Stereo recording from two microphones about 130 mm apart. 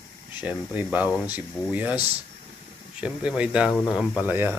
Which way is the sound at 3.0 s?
10° right (ahead or behind).